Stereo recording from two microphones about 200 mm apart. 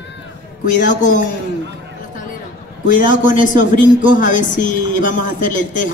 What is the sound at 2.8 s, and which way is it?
A man's voice, 40° left (ahead or behind).